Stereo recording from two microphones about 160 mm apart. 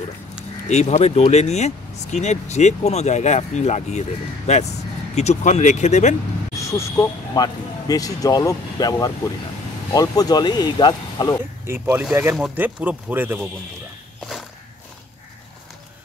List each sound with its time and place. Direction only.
0.7 s speech: 45° left (ahead or behind)
6.5 s speech: 20° left (ahead or behind)
11.6 s speech: 15° right (ahead or behind)